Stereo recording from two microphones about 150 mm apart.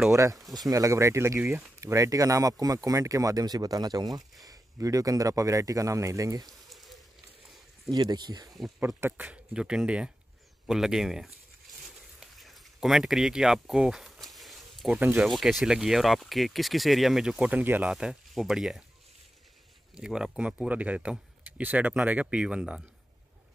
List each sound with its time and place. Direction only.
0.1 s speech: 20° right (ahead or behind)
6.7 s a sound: centre (ahead or behind)
7.9 s speech: 30° right (ahead or behind)
8.5 s speech: centre (ahead or behind)
8.8 s speech: 15° right (ahead or behind)
14.2 s a sound: centre (ahead or behind)
15.0 s speech: 10° right (ahead or behind)
15.2 s speech: centre (ahead or behind)
20.0 s speech: 5° right (ahead or behind)